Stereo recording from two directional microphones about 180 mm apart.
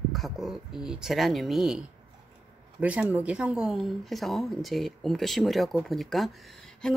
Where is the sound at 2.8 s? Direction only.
5° right (ahead or behind).